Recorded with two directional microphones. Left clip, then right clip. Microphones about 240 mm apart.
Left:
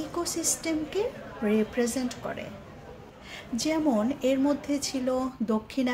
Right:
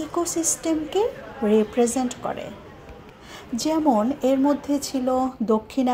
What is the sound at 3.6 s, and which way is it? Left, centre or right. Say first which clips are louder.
Speech: right 6 dB; centre.